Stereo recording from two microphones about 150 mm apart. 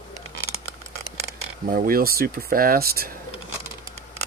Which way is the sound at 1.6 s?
75° right (ahead or behind).